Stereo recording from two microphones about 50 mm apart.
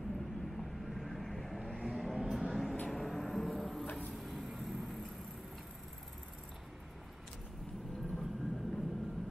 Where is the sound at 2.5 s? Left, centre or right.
Centre.